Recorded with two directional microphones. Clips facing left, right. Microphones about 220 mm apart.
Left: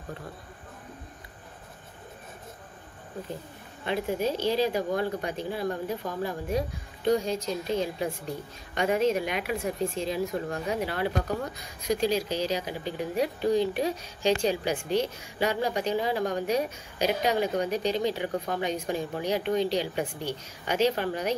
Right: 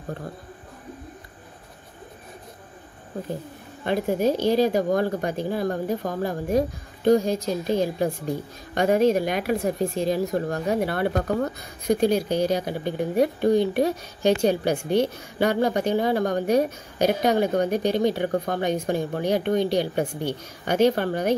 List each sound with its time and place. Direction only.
3.8 s speech: 45° right (ahead or behind)
8.7 s speech: 40° right (ahead or behind)
10.9 s speech: 55° right (ahead or behind)